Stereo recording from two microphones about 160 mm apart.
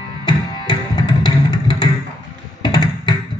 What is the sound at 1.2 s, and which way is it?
Music, 30° left (ahead or behind).